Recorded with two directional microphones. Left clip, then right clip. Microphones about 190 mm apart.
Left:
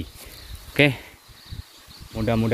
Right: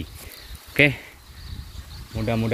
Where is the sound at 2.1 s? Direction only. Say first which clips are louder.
Left 2 dB; 35° left (ahead or behind).